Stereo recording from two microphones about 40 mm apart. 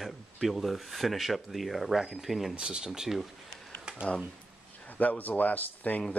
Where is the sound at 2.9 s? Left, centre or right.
Centre.